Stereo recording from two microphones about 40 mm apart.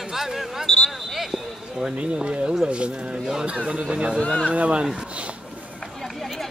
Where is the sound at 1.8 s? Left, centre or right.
Centre.